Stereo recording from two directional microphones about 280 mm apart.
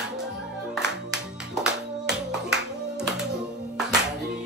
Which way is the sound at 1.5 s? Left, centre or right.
Centre.